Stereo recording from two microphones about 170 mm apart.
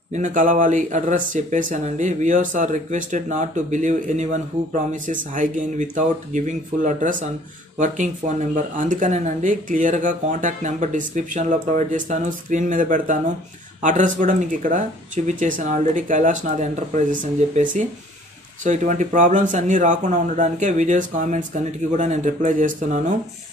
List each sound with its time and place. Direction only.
0.1 s speech: 45° right (ahead or behind)